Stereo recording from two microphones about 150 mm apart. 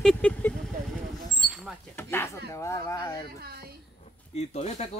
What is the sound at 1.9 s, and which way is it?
Speech, 15° left (ahead or behind).